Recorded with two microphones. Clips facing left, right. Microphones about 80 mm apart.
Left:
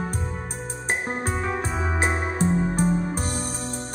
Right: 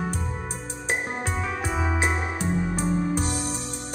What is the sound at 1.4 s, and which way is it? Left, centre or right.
Music, left.